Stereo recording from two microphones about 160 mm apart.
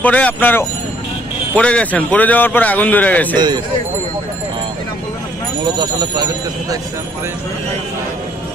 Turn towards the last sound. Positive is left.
turn(degrees=-25)  # may be behind; listen again after turning